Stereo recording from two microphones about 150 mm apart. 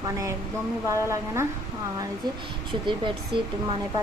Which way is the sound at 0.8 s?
20° right (ahead or behind).